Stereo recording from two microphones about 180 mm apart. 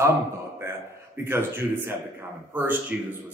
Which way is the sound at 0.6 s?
15° right (ahead or behind).